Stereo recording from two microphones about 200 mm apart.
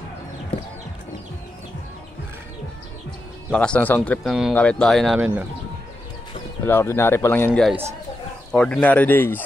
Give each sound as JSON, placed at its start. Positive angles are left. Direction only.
{"t": 3.5, "sound": "speech", "side_deg": 5}
{"t": 6.6, "sound": "speech", "side_deg": 10}